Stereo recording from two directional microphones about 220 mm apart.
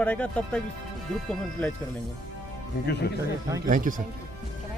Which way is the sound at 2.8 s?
50° left (ahead or behind).